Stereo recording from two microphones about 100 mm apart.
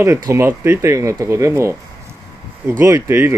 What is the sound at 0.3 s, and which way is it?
Speech, 25° right (ahead or behind).